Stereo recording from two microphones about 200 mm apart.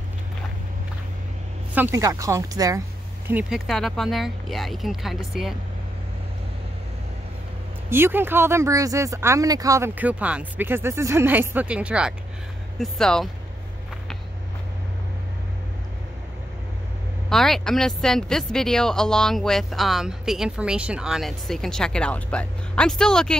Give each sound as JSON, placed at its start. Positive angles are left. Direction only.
{"t": 1.8, "sound": "speech", "side_deg": -15}
{"t": 3.3, "sound": "speech", "side_deg": -5}
{"t": 7.9, "sound": "speech", "side_deg": -10}
{"t": 17.3, "sound": "speech", "side_deg": 0}